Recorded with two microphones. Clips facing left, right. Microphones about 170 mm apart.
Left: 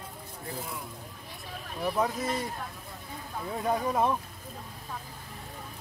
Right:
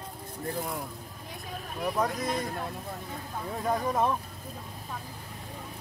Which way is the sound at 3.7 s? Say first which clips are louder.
Even; 5° left (ahead or behind).